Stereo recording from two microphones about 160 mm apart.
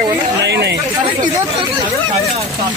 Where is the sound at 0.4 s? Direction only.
90° right.